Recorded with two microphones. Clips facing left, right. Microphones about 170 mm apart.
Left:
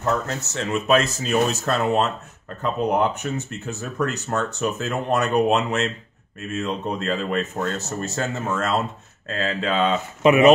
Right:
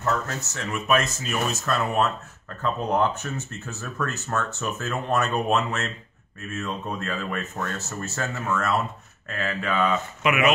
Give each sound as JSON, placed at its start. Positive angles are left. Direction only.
{"t": 0.0, "sound": "speech", "side_deg": 25}